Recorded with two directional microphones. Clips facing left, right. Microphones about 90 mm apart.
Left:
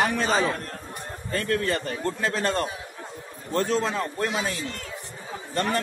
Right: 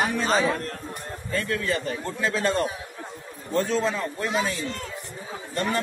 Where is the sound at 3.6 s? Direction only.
45° left (ahead or behind).